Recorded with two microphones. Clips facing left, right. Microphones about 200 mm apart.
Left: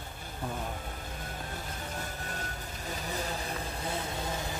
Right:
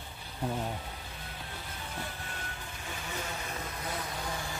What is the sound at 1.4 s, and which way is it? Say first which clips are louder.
Vehicle: left 4 dB; 45° left (ahead or behind).